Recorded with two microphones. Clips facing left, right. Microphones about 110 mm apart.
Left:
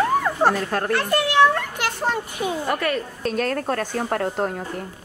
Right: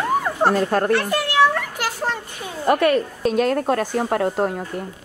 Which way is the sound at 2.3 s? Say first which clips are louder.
Left 7 dB; 15° left (ahead or behind).